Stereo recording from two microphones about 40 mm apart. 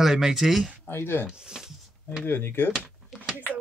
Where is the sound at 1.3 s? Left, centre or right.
Centre.